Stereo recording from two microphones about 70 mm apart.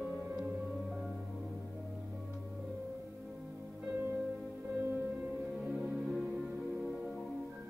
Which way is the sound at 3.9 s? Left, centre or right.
Right.